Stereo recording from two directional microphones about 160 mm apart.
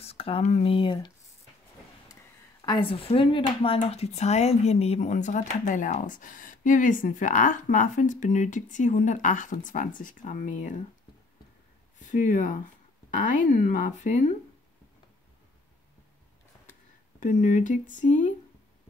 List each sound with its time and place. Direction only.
0.0 s speech: 40° left (ahead or behind)
2.6 s speech: 30° left (ahead or behind); by 10.8 s 50° left (ahead or behind)
12.0 s speech: 55° left (ahead or behind)
17.2 s speech: 50° left (ahead or behind)